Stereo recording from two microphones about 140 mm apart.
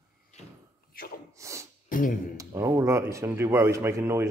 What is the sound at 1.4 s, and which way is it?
Sneeze, 20° right (ahead or behind).